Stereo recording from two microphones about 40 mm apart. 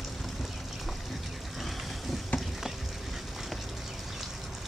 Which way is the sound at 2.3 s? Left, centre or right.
Left.